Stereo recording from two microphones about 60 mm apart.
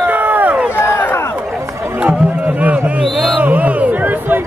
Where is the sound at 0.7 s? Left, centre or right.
Left.